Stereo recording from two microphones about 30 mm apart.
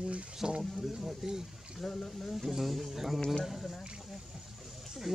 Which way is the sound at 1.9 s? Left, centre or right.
Left.